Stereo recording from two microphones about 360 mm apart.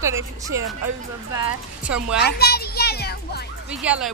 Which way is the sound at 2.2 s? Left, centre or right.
Left.